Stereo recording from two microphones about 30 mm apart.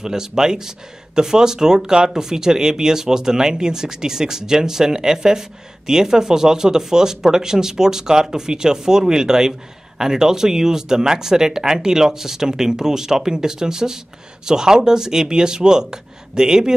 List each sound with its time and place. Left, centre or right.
0.0 s speech: centre